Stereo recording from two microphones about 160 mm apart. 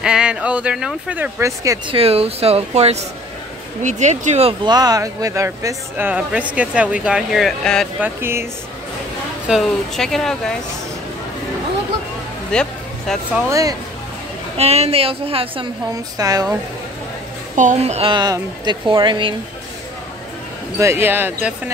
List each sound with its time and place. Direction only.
0.0 s speech: 5° right (ahead or behind)
1.9 s speech: 35° right (ahead or behind)
4.6 s speech: 25° right (ahead or behind); by 7.9 s 5° left (ahead or behind)
8.0 s speech: 15° right (ahead or behind)
9.5 s speech: centre (ahead or behind)
12.4 s a sound: 5° left (ahead or behind)
13.5 s speech: 20° right (ahead or behind)
14.6 s speech: 40° right (ahead or behind)
15.9 s speech: 20° right (ahead or behind)
17.6 s speech: 50° right (ahead or behind)
18.1 s speech: 25° right (ahead or behind)
20.8 s speech: 15° right (ahead or behind)